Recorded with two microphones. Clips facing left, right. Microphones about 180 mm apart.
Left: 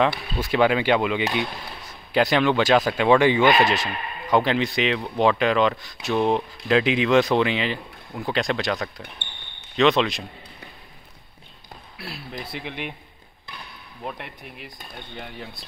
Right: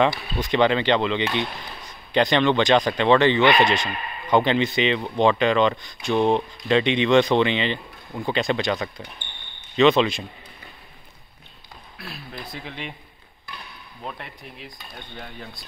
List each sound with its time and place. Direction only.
0.4 s speech: 5° left (ahead or behind)
12.6 s speech: 10° left (ahead or behind)